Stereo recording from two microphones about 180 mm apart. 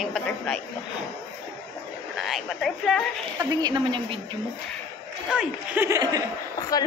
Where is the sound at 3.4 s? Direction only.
25° right (ahead or behind).